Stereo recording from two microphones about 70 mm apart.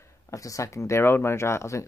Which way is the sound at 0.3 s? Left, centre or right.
Left.